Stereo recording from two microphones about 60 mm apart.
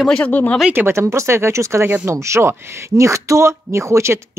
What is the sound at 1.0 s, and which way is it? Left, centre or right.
Speech, right.